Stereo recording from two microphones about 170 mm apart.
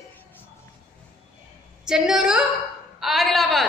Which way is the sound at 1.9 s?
5° right (ahead or behind).